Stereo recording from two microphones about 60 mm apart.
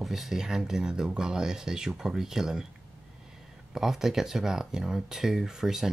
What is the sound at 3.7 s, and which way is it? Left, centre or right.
Speech, centre.